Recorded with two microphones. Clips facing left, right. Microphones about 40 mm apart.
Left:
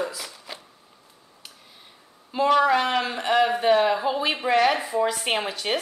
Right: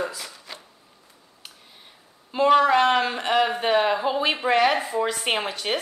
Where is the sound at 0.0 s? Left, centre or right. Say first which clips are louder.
Even; centre.